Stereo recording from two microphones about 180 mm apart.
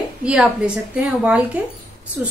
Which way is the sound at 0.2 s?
5° right (ahead or behind).